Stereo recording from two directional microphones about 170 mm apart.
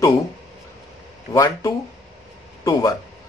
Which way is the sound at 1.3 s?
20° left (ahead or behind).